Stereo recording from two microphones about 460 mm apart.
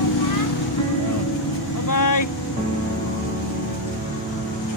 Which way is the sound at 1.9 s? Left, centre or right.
Left.